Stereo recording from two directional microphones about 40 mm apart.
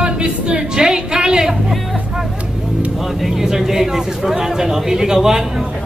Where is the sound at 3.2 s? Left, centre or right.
Centre.